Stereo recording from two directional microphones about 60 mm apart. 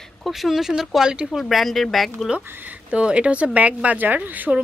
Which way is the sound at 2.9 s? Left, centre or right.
Centre.